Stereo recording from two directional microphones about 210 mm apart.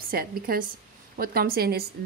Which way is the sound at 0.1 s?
45° right (ahead or behind).